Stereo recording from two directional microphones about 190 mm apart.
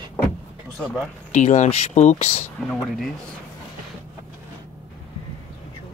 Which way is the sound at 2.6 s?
Centre (ahead or behind).